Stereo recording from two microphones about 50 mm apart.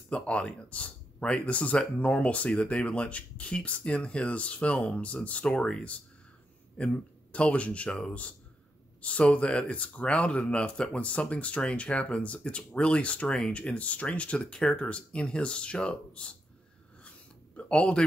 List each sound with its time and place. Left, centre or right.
0.1 s speech: left
17.6 s speech: left